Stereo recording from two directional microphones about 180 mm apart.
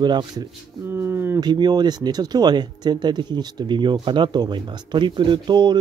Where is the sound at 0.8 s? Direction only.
10° right (ahead or behind).